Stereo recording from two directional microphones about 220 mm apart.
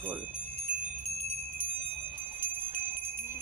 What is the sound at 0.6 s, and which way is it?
Wind chime, 30° right (ahead or behind).